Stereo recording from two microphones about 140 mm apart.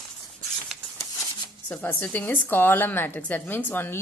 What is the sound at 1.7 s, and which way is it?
A woman's voice, 15° left (ahead or behind).